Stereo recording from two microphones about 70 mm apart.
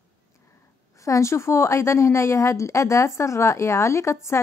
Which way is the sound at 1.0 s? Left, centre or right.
Left.